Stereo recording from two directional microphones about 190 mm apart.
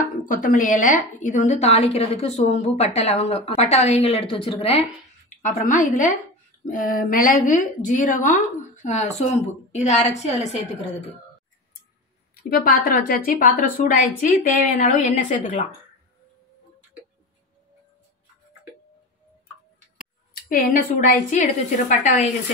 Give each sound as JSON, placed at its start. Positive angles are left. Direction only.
{"t": 0.0, "sound": "a woman's voice", "side_deg": 45}
{"t": 5.4, "sound": "a woman's voice", "side_deg": 45}
{"t": 12.4, "sound": "a woman's voice", "side_deg": 50}
{"t": 20.0, "sound": "a sound", "side_deg": 50}
{"t": 21.3, "sound": "a woman's voice", "side_deg": 40}